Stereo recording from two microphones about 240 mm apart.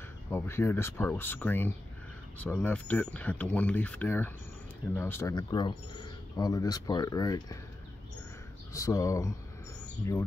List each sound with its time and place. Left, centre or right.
0.3 s speech: centre
8.7 s speech: centre